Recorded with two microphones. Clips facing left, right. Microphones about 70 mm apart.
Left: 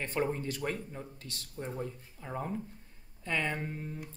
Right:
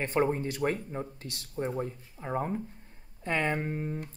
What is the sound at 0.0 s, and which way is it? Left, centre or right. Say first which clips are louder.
Speech: right 5 dB; right.